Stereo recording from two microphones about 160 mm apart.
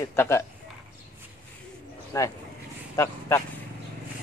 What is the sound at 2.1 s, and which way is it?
Speech, 20° left (ahead or behind).